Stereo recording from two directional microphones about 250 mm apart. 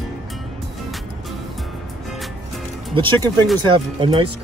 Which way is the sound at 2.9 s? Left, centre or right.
Centre.